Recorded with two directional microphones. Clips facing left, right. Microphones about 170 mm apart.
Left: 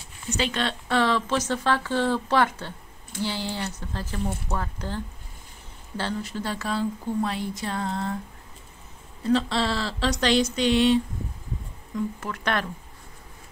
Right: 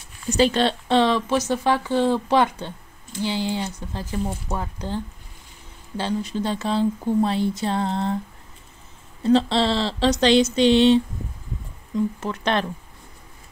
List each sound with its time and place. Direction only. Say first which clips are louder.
0.3 s speech: right 8 dB; 35° right (ahead or behind)
9.2 s speech: right 5 dB; 30° right (ahead or behind)
12.2 s speech: right 4 dB; 25° right (ahead or behind)